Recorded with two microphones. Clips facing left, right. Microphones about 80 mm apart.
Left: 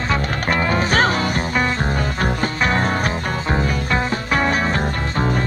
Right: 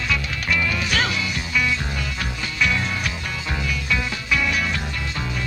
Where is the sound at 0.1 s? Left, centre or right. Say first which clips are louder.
Left 5 dB; left.